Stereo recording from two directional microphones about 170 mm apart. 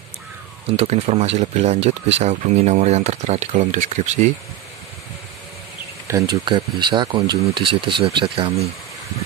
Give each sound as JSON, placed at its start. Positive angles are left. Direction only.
{"t": 0.7, "sound": "speech", "side_deg": -35}
{"t": 6.0, "sound": "speech", "side_deg": -20}